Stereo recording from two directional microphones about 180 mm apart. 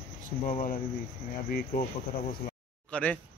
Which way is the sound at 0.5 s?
45° left (ahead or behind).